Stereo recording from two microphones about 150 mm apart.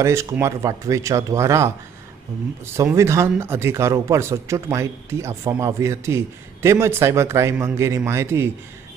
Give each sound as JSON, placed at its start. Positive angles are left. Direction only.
{"t": 0.0, "sound": "speech", "side_deg": -20}